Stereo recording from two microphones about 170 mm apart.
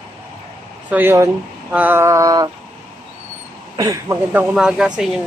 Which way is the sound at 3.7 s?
20° right (ahead or behind).